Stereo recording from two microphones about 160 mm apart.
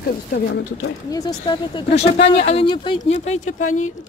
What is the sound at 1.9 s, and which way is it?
Speech, 40° left (ahead or behind).